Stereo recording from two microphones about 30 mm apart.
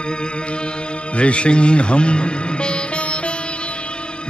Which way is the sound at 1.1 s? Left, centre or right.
Left.